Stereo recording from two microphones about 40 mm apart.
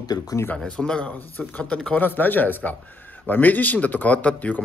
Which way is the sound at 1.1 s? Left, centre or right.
Left.